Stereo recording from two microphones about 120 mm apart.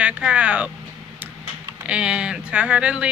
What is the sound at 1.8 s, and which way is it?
Speech, 10° right (ahead or behind).